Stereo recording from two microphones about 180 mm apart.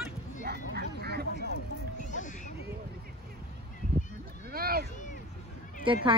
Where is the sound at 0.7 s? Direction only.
65° right (ahead or behind).